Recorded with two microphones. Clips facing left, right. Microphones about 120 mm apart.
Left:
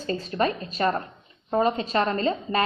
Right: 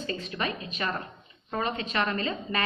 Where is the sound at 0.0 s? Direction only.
35° left (ahead or behind).